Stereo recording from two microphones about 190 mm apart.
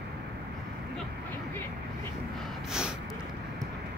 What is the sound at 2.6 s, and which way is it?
Snort, 5° right (ahead or behind).